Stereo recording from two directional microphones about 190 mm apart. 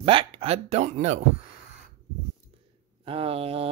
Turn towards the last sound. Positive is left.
turn(degrees=-30)  # may be behind; listen again after turning